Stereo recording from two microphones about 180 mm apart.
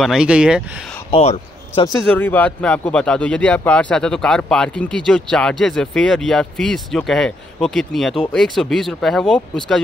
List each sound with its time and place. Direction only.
0.0 s speech: 5° right (ahead or behind)
1.1 s a man's voice: 35° left (ahead or behind)
1.9 s speech: 10° left (ahead or behind)